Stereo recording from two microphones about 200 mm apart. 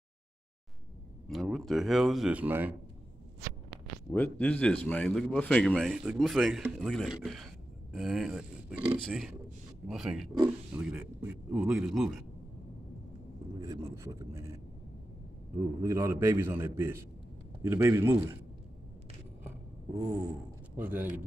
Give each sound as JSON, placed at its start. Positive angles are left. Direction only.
{"t": 1.3, "sound": "a man's voice", "side_deg": 0}
{"t": 4.1, "sound": "a man's voice", "side_deg": 10}
{"t": 9.8, "sound": "a man's voice", "side_deg": 0}
{"t": 13.6, "sound": "a man's voice", "side_deg": -15}
{"t": 15.8, "sound": "a man's voice", "side_deg": -15}
{"t": 19.9, "sound": "a sound", "side_deg": -20}
{"t": 20.7, "sound": "a man's voice", "side_deg": -10}